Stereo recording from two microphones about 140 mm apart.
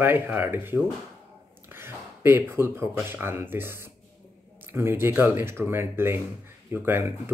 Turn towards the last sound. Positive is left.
turn(degrees=-15)  # may be behind; listen again after turning